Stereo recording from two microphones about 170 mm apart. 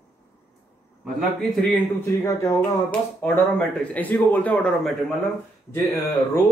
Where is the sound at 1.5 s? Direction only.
Centre (ahead or behind).